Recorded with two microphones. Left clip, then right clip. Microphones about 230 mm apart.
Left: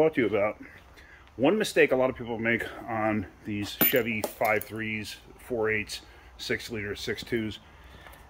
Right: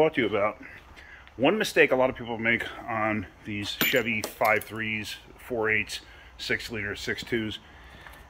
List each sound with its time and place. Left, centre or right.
0.0 s speech: centre